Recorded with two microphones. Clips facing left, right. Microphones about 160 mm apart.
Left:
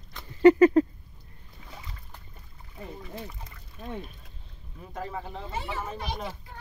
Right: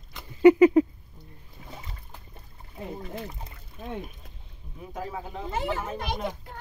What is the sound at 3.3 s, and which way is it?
Speech, 25° right (ahead or behind).